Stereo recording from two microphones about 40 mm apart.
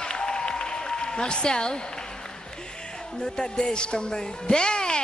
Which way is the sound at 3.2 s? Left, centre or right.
Centre.